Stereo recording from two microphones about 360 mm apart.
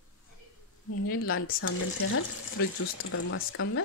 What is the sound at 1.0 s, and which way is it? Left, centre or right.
Speech, left.